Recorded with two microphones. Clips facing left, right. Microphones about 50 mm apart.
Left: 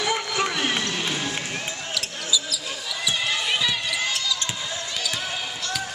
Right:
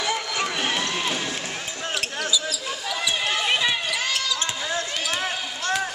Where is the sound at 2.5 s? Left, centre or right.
Right.